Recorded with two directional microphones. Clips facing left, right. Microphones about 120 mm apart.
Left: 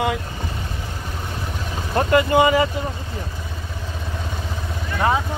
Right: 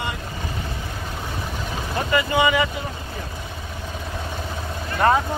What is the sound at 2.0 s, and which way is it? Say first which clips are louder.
Speech: left 5 dB; 50° left (ahead or behind).